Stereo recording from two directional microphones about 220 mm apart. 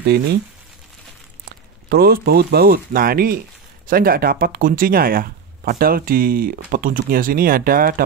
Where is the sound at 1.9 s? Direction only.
45° right (ahead or behind).